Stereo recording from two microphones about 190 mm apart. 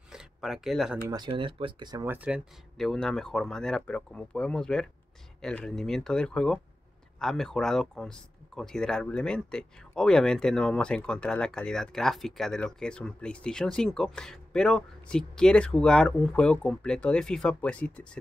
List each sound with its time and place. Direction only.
0.1 s a sound: centre (ahead or behind)
1.0 s speech: 20° right (ahead or behind)
2.0 s speech: 5° right (ahead or behind)